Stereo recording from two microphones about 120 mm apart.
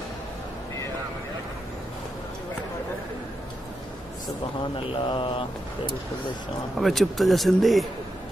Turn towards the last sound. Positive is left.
turn(degrees=0)  # may be behind; listen again after turning